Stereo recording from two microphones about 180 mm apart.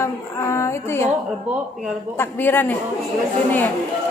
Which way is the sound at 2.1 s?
10° left (ahead or behind).